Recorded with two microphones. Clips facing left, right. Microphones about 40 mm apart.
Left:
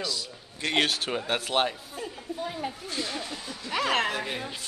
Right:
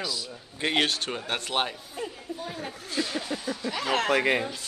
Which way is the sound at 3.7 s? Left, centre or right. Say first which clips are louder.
Left 3 dB; left.